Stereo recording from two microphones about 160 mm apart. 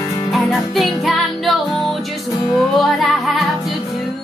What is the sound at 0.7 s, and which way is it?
Music, centre (ahead or behind).